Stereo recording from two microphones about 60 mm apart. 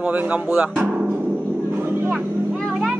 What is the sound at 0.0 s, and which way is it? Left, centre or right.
Speech, right.